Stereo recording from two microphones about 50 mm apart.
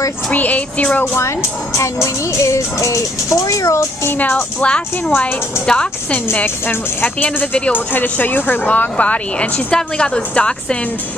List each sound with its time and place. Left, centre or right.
0.3 s speech: left
2.3 s speech: left
4.2 s speech: left
4.6 s a woman's voice: centre
6.4 s a woman's voice: left; by 10.8 s centre